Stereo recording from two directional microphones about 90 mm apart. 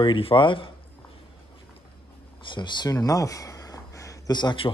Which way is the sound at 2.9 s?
45° left (ahead or behind).